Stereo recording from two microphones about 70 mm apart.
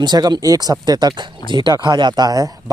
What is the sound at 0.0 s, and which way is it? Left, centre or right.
Speech, right.